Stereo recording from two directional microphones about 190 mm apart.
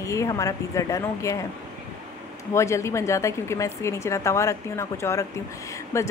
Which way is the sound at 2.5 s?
15° left (ahead or behind).